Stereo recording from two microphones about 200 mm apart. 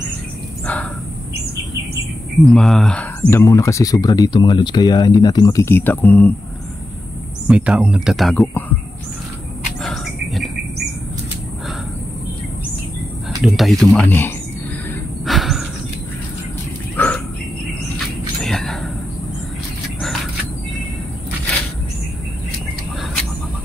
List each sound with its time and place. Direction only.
2.4 s speech: centre (ahead or behind)
7.4 s speech: 5° right (ahead or behind)
9.8 s cricket: centre (ahead or behind)
13.4 s speech: centre (ahead or behind)
15.2 s a sound: centre (ahead or behind)
16.9 s a sound: 5° left (ahead or behind)